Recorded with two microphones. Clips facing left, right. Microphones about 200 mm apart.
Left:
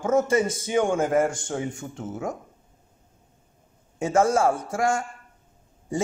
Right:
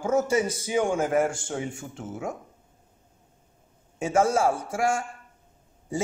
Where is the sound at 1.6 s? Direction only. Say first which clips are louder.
Left 3 dB; 25° right (ahead or behind).